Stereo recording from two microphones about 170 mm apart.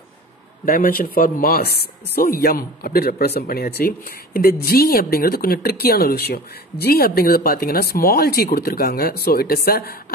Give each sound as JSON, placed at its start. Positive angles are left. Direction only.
{"t": 0.7, "sound": "speech", "side_deg": 60}